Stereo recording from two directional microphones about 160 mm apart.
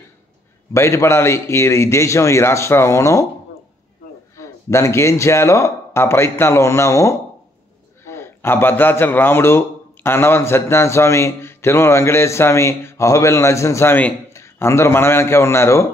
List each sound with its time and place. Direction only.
0.7 s a man's voice: 15° left (ahead or behind)
4.4 s a man's voice: 20° left (ahead or behind)